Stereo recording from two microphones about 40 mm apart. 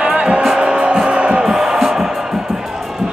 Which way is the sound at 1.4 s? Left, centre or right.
Centre.